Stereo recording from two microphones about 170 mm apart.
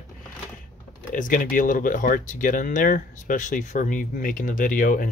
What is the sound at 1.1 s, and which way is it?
Speech, 50° left (ahead or behind).